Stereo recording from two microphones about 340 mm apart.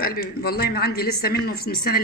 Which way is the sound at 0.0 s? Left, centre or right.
Left.